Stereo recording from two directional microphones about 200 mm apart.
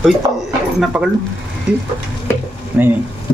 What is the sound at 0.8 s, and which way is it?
Speech, 5° right (ahead or behind).